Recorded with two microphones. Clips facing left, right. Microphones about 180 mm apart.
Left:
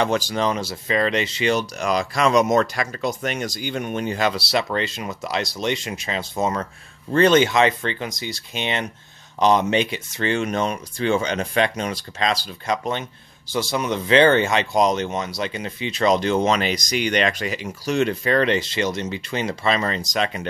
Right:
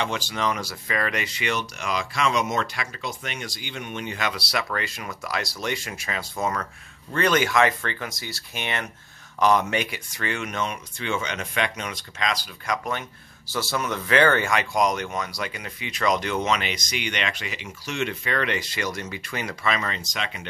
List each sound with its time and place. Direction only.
0.0 s speech: 40° left (ahead or behind)